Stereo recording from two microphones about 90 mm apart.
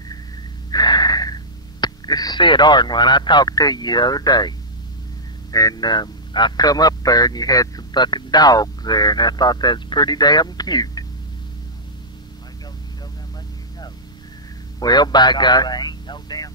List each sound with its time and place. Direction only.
0.7 s speech: 50° left (ahead or behind)
14.8 s speech: 50° left (ahead or behind)